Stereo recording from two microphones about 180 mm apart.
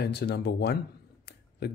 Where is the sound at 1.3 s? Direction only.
65° left (ahead or behind).